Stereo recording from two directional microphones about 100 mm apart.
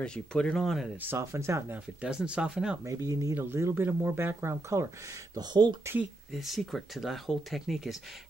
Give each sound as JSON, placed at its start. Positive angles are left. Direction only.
{"t": 0.0, "sound": "speech", "side_deg": 10}
{"t": 1.0, "sound": "speech", "side_deg": -25}
{"t": 2.0, "sound": "speech", "side_deg": -10}
{"t": 2.8, "sound": "speech", "side_deg": -35}
{"t": 3.3, "sound": "speech", "side_deg": -25}
{"t": 5.3, "sound": "speech", "side_deg": -45}
{"t": 6.3, "sound": "speech", "side_deg": 0}